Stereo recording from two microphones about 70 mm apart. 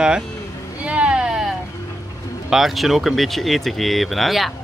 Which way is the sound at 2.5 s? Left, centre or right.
Centre.